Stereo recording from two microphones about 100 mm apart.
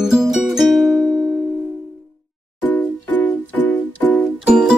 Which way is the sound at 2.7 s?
15° left (ahead or behind).